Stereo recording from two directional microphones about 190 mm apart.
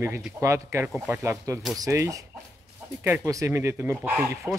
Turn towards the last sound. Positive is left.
turn(degrees=-10)  # may be behind; listen again after turning